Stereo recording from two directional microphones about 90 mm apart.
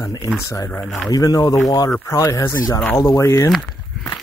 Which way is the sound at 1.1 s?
45° left (ahead or behind).